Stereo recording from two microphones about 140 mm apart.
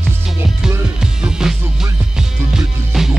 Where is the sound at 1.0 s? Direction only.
5° right (ahead or behind).